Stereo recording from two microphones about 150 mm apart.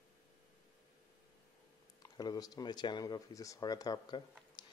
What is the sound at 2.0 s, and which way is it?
Speech, 25° left (ahead or behind).